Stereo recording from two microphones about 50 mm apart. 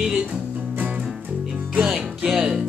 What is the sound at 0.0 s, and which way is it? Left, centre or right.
Music, centre.